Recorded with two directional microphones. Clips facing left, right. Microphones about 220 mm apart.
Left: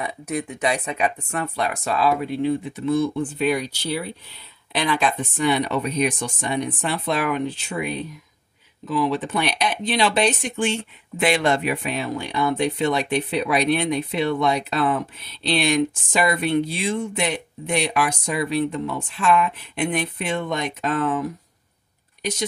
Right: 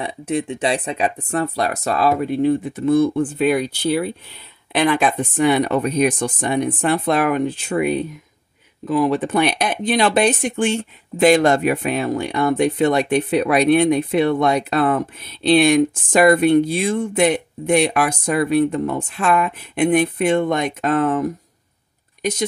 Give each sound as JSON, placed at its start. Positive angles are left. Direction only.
{"t": 0.0, "sound": "speech", "side_deg": -30}